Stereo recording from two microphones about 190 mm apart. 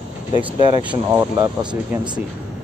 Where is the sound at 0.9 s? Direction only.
15° right (ahead or behind).